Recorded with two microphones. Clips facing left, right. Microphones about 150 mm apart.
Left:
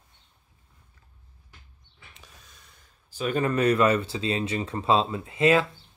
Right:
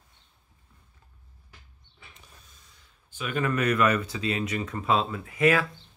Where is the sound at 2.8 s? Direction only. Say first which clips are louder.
Left 6 dB; 35° left (ahead or behind).